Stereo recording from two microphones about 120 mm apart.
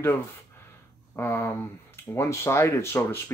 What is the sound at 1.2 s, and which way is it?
Speech, 20° left (ahead or behind).